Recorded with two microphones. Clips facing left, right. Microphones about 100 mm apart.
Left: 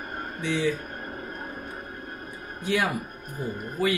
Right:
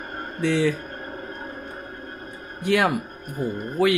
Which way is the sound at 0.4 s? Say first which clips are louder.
Right 5 dB; 60° right (ahead or behind).